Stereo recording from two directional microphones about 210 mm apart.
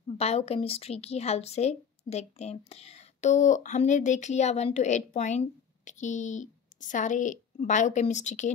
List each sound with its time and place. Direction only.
0.2 s a woman's voice: 30° left (ahead or behind)